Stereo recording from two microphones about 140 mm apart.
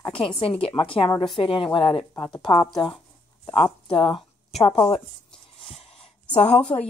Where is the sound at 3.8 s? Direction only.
40° left (ahead or behind).